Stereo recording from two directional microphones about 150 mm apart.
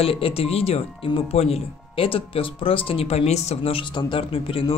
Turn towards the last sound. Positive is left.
turn(degrees=35)  # may be behind; listen again after turning